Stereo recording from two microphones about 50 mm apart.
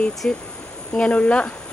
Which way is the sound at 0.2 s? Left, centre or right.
Left.